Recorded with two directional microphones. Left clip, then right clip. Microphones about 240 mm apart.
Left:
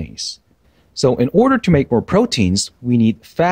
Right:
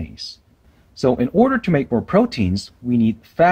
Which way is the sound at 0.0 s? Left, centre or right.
Left.